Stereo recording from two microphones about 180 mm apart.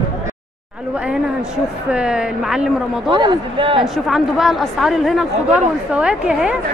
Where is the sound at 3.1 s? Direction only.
25° right (ahead or behind).